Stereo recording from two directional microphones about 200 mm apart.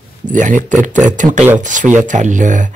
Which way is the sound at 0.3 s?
40° right (ahead or behind).